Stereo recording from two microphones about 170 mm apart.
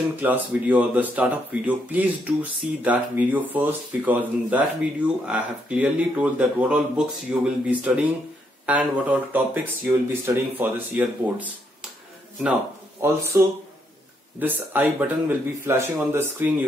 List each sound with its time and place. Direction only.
0.1 s speech: 10° right (ahead or behind)
13.0 s speech: 15° right (ahead or behind)